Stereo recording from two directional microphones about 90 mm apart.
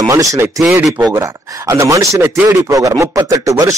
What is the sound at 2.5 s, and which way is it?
Speech, 40° right (ahead or behind).